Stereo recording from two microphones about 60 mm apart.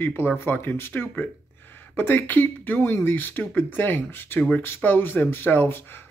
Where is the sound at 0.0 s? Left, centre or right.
Left.